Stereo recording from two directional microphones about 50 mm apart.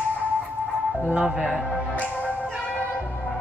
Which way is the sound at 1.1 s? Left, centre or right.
Centre.